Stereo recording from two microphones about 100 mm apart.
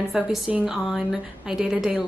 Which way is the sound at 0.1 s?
5° right (ahead or behind).